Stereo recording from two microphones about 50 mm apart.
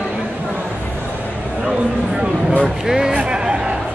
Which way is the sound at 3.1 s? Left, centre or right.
Right.